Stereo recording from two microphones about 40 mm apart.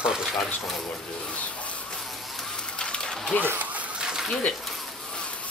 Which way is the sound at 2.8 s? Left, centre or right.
Left.